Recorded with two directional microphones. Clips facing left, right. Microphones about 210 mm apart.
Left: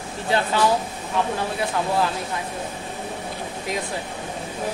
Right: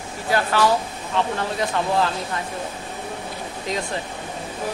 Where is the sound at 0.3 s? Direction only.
15° left (ahead or behind).